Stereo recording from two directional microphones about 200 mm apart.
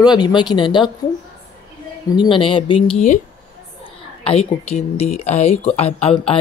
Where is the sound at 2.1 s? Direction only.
25° left (ahead or behind).